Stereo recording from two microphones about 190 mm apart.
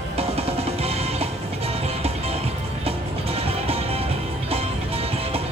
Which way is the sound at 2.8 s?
30° right (ahead or behind).